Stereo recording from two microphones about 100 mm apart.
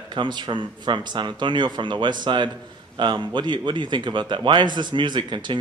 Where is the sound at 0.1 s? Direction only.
50° right (ahead or behind).